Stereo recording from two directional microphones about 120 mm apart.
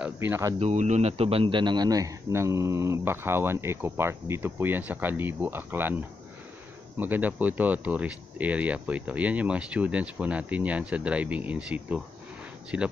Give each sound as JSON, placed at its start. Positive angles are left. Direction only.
{"t": 0.0, "sound": "a man's voice", "side_deg": -20}
{"t": 0.6, "sound": "a man's voice", "side_deg": -70}
{"t": 7.0, "sound": "speech", "side_deg": -15}